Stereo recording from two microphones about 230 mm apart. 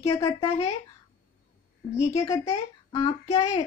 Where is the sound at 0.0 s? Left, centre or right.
Centre.